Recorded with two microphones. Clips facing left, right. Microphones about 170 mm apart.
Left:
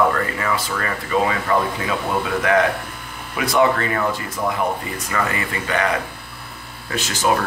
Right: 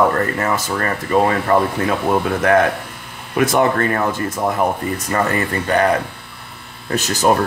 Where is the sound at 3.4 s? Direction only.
50° right (ahead or behind).